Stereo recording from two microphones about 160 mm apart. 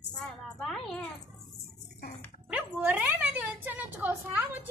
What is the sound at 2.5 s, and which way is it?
Speech, 10° right (ahead or behind).